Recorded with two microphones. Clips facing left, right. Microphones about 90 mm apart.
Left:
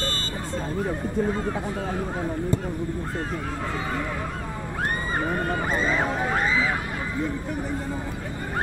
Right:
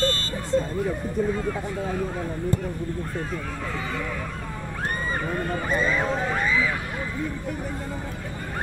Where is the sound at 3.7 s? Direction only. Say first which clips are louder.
Left 1 dB; 30° left (ahead or behind).